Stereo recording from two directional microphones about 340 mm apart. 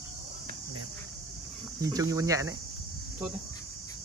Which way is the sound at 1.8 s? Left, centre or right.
Centre.